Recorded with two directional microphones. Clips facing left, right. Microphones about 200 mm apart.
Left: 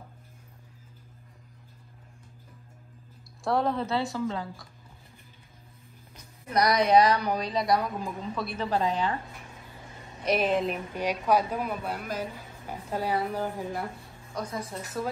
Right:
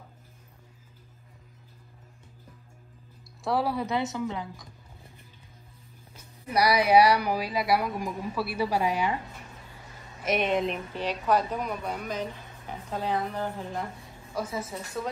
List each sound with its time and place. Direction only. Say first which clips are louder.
3.4 s speech: left 1 dB; 5° right (ahead or behind)
6.1 s speech: even; 10° right (ahead or behind)
10.2 s a woman's voice: left 1 dB; centre (ahead or behind)
14.3 s a woman's voice: right 2 dB; 5° right (ahead or behind)